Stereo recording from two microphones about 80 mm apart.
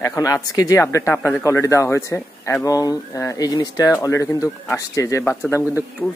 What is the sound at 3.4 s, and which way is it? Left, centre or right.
Speech, left.